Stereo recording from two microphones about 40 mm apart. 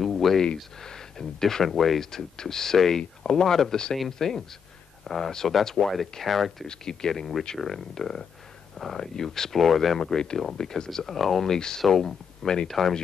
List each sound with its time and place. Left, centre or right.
0.0 s a sound: centre
0.7 s speech: centre
2.0 s speech: centre
6.7 s speech: centre